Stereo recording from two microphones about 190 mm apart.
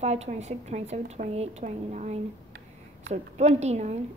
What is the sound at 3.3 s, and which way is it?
Speech, 35° right (ahead or behind).